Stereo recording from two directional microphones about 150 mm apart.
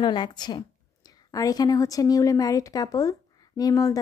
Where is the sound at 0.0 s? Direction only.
30° left (ahead or behind).